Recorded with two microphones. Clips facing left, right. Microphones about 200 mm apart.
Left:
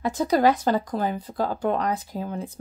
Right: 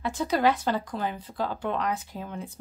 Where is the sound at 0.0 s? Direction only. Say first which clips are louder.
Left 4 dB; 40° left (ahead or behind).